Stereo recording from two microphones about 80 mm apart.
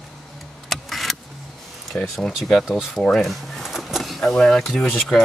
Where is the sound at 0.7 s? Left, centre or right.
Centre.